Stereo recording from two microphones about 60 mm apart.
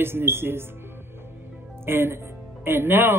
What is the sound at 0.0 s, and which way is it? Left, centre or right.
Speech, right.